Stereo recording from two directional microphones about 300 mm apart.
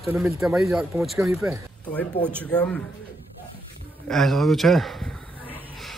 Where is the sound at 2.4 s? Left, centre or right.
Centre.